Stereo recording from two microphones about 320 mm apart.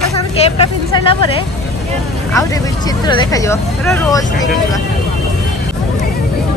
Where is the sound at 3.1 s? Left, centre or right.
Centre.